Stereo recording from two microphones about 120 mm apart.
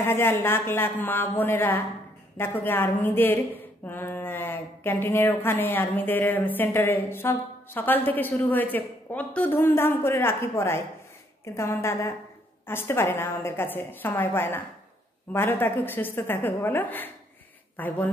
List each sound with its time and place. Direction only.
0.0 s a woman's voice: 20° left (ahead or behind)